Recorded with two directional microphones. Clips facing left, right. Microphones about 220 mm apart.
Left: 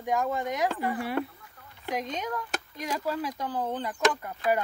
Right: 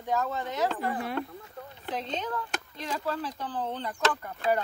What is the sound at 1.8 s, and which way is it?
Speech, 10° left (ahead or behind).